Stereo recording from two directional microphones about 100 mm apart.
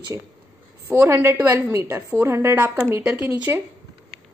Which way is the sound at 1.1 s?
25° right (ahead or behind).